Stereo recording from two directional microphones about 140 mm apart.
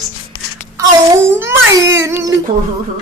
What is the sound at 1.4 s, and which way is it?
Speech, 20° right (ahead or behind).